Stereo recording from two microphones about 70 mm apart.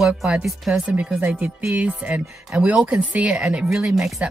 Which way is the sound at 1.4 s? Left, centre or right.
Right.